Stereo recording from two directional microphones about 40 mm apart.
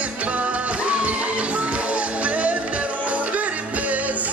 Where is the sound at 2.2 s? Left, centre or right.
Right.